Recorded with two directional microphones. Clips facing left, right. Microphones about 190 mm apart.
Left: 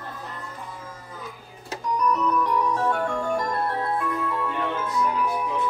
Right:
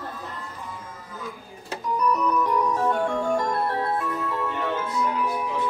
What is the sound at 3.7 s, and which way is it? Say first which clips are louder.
Music: right 1 dB; 20° right (ahead or behind).